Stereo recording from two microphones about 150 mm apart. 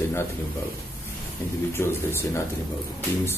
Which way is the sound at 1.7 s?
15° left (ahead or behind).